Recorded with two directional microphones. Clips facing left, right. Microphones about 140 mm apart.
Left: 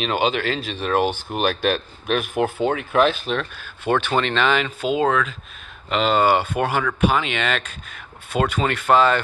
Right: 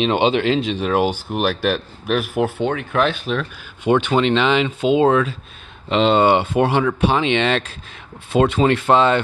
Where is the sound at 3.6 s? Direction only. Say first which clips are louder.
Right 7 dB; 15° right (ahead or behind).